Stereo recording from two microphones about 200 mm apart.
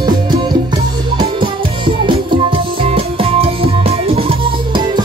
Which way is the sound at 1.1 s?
25° right (ahead or behind).